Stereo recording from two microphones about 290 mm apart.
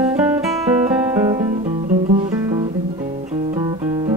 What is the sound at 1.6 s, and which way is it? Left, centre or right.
Music, centre.